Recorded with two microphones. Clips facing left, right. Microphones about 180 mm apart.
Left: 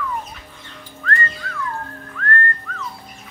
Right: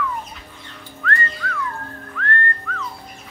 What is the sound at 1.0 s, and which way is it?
Whistling, 35° left (ahead or behind).